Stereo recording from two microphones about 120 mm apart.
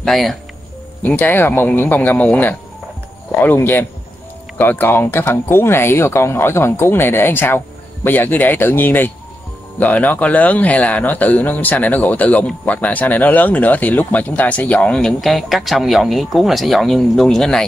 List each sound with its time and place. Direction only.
0.0 s speech: centre (ahead or behind)
1.0 s speech: 15° left (ahead or behind)